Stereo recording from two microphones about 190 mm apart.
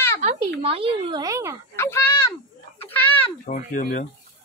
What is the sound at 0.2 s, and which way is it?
Speech, 35° right (ahead or behind).